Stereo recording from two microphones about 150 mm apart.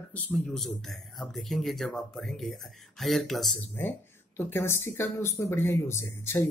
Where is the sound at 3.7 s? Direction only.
15° left (ahead or behind).